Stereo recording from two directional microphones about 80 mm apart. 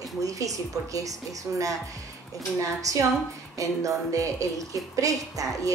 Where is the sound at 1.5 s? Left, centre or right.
Right.